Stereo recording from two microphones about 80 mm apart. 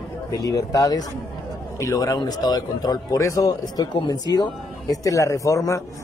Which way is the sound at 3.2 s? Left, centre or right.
Left.